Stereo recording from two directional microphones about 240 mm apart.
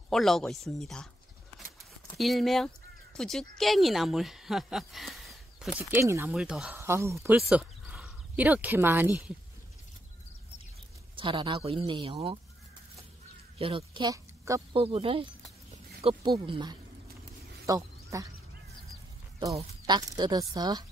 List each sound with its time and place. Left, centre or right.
0.1 s speech: centre
2.1 s speech: centre
11.1 s speech: right
13.6 s speech: right
17.6 s a sound: centre
19.5 s a woman's voice: centre